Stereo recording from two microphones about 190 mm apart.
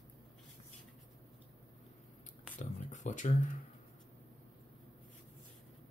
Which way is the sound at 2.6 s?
40° left (ahead or behind).